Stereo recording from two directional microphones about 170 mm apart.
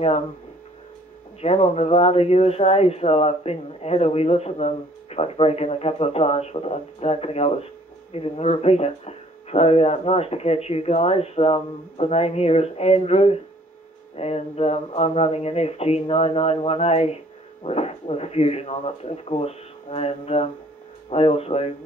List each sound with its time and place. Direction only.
1.4 s speech: 35° left (ahead or behind)